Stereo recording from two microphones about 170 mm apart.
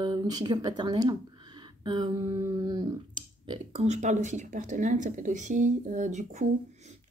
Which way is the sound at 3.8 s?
45° right (ahead or behind).